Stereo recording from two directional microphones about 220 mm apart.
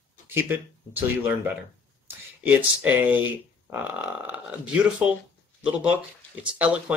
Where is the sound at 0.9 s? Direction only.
10° right (ahead or behind).